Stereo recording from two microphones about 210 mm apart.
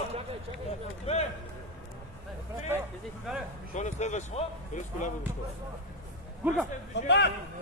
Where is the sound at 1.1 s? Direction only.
30° left (ahead or behind).